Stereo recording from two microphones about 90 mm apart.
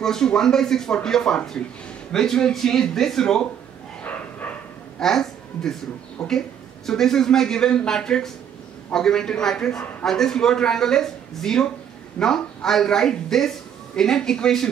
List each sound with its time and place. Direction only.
0.0 s speech: 5° left (ahead or behind)
4.0 s dog: 20° left (ahead or behind)
5.0 s a woman's voice: 5° left (ahead or behind)